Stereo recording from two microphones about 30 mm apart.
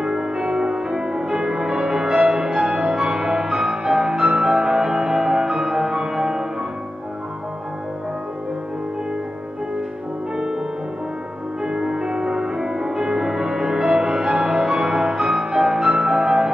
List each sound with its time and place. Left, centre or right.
0.0 s music: right
10.3 s music: right
11.6 s music: right